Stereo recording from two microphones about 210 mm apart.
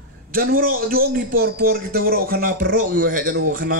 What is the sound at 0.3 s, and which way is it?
A man's voice, 45° right (ahead or behind).